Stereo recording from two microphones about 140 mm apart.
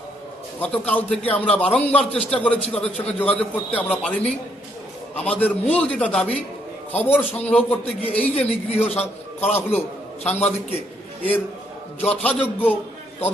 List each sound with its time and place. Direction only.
0.6 s a man's voice: 10° left (ahead or behind)
8.4 s speech: 50° left (ahead or behind)
9.6 s a man's voice: 15° left (ahead or behind)
10.2 s speech: 50° left (ahead or behind)
12.0 s a man's voice: 10° left (ahead or behind)